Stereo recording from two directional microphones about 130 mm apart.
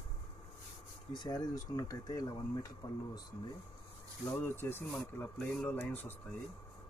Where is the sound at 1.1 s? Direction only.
30° left (ahead or behind).